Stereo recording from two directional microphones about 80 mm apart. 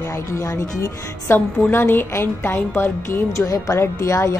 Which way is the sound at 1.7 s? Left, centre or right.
Left.